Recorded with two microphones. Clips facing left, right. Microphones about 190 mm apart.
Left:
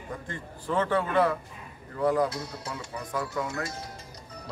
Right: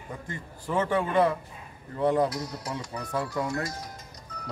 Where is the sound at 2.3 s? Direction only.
25° left (ahead or behind).